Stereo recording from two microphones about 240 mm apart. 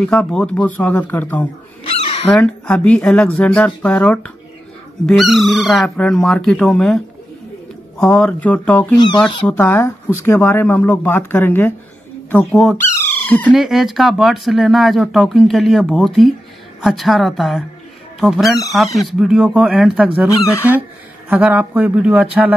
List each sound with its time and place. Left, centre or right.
0.0 s speech: centre
8.0 s speech: centre
8.9 s speech: centre
20.2 s speech: centre
21.3 s speech: centre